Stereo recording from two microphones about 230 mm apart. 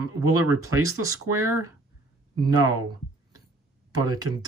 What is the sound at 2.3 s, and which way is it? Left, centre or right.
Speech, centre.